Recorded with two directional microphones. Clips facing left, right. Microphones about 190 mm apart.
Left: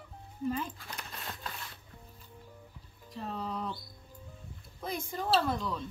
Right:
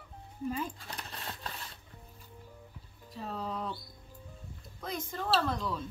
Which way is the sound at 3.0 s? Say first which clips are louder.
Even; 5° right (ahead or behind).